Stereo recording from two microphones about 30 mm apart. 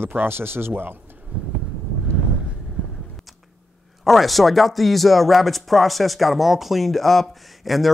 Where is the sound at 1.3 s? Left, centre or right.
Right.